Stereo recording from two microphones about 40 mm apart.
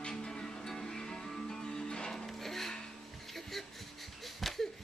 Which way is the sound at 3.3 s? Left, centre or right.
Centre.